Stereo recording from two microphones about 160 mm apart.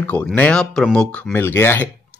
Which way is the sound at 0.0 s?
10° left (ahead or behind).